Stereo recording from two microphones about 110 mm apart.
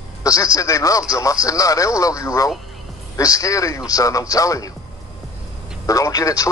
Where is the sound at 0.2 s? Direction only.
30° left (ahead or behind).